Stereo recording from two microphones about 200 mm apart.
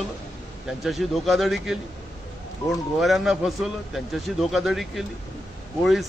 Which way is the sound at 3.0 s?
Centre (ahead or behind).